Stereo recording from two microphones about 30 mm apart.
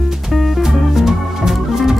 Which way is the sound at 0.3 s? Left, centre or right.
Centre.